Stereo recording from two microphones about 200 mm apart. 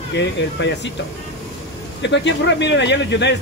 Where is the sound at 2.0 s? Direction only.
60° left (ahead or behind).